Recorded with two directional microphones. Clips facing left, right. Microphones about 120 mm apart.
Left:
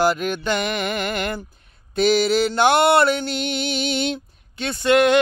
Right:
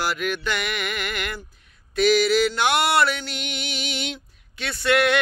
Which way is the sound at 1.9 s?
30° left (ahead or behind).